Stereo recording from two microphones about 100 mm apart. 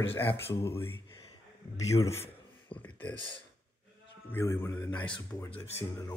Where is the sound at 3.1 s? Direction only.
60° left (ahead or behind).